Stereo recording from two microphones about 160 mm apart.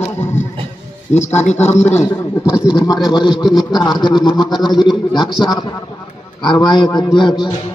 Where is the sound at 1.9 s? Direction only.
15° left (ahead or behind).